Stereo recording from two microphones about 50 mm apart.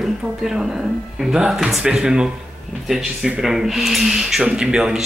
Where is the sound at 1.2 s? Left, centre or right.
Centre.